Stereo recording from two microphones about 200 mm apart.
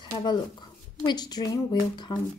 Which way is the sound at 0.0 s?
20° left (ahead or behind).